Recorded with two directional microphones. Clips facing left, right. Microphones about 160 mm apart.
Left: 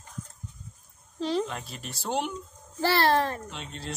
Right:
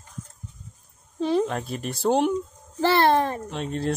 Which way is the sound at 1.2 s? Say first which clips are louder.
Right 6 dB; 55° right (ahead or behind).